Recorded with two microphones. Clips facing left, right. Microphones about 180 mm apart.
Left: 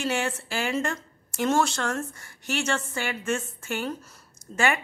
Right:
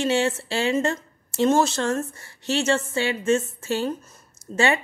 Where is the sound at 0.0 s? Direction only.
25° right (ahead or behind).